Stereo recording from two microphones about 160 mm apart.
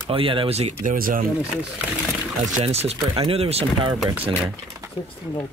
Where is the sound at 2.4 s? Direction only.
40° right (ahead or behind).